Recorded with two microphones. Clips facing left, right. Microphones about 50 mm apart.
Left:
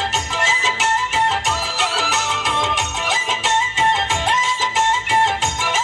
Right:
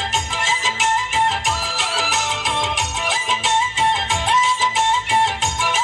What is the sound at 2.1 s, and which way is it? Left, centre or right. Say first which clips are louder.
Music: left 2 dB; left.